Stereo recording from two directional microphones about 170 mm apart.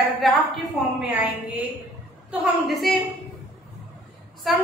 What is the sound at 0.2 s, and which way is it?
Speech, centre (ahead or behind).